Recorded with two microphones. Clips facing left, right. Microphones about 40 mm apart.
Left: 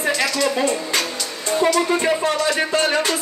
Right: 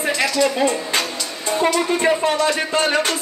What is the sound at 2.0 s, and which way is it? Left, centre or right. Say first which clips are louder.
Speech: right 2 dB; centre.